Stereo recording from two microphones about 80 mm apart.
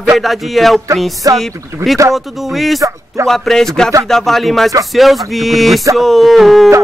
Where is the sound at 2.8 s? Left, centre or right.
Right.